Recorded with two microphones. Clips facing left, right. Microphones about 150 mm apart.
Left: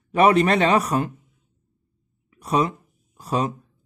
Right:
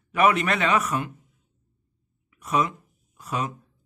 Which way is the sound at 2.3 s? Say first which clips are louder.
Left 3 dB; 30° left (ahead or behind).